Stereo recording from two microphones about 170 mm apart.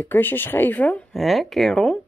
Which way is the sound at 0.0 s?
10° left (ahead or behind).